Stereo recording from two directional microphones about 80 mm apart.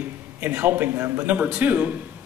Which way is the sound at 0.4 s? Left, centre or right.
Right.